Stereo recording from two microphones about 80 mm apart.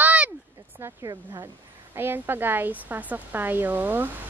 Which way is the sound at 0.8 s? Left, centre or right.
Right.